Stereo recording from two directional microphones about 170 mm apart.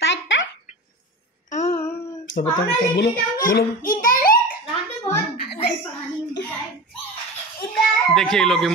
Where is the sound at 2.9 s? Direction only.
75° left (ahead or behind).